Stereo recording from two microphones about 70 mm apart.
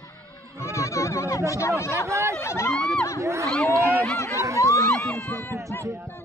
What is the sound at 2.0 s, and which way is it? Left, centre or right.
Speech, right.